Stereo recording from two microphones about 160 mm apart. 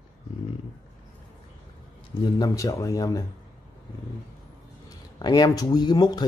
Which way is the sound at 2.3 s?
20° left (ahead or behind).